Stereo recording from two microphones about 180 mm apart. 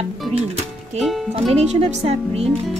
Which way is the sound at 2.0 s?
35° right (ahead or behind).